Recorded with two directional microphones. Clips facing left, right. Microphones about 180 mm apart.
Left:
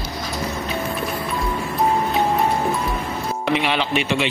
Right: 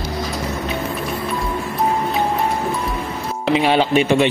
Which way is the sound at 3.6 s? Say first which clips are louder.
Right 6 dB; 45° right (ahead or behind).